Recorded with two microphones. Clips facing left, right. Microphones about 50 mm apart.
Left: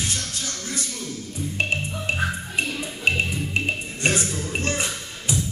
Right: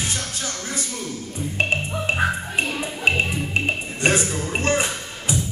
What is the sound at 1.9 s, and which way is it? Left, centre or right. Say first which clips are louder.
Music: right 4 dB; right.